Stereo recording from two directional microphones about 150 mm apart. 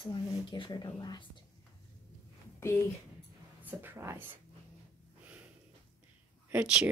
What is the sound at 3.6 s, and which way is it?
Speech, 15° right (ahead or behind).